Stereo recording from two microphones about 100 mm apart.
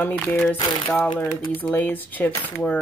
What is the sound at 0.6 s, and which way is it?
Speech, 50° left (ahead or behind).